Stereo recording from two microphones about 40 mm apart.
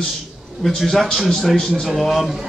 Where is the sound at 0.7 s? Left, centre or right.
Centre.